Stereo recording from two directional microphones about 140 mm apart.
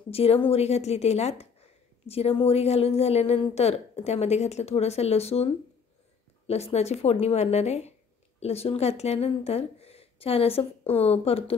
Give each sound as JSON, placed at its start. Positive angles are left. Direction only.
{"t": 0.1, "sound": "speech", "side_deg": 45}